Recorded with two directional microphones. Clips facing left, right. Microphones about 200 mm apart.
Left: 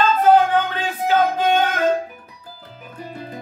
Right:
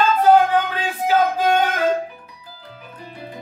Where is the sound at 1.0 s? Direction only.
10° right (ahead or behind).